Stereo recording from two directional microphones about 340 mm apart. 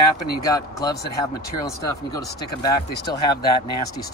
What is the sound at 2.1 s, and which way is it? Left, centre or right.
Speech, centre.